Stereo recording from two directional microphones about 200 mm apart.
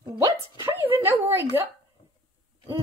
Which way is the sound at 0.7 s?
10° right (ahead or behind).